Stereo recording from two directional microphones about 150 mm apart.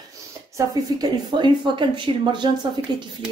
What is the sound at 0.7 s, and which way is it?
Speech, 25° right (ahead or behind).